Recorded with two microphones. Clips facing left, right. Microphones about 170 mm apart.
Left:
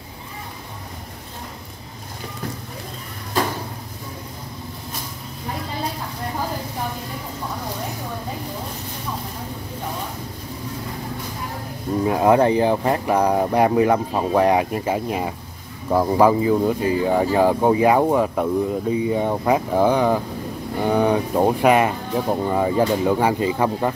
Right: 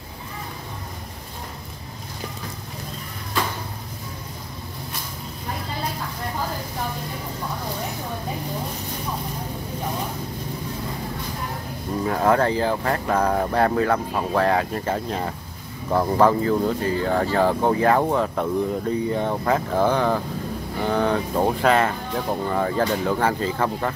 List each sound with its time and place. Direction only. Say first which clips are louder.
12.0 s speech: left 4 dB; 15° left (ahead or behind)